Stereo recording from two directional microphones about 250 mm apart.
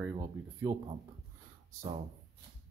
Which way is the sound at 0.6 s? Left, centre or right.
Centre.